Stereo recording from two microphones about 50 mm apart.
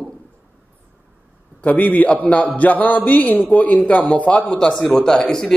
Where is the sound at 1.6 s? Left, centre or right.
Left; by 5.5 s centre.